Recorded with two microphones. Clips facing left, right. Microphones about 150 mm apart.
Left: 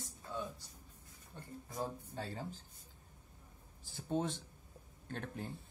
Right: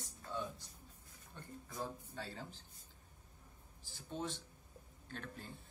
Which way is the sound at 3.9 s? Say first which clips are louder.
Left 7 dB; 50° left (ahead or behind).